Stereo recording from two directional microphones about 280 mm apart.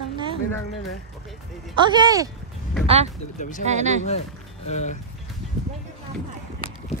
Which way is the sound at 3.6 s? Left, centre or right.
Right.